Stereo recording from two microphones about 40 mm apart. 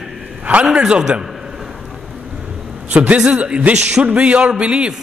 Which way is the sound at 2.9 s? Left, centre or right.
Right.